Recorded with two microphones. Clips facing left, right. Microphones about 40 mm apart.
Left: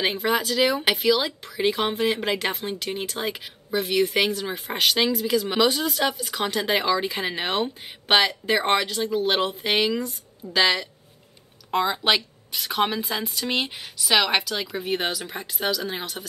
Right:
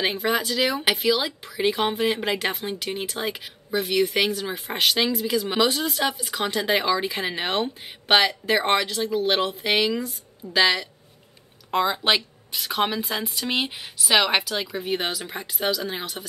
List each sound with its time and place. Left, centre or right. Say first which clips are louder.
0.0 s speech: even; centre